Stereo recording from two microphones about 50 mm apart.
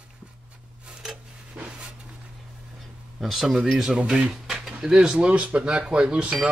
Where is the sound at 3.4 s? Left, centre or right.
Centre.